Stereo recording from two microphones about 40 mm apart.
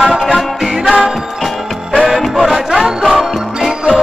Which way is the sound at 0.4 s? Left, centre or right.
Centre.